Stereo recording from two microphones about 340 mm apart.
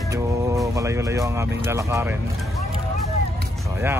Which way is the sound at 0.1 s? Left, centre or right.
Centre.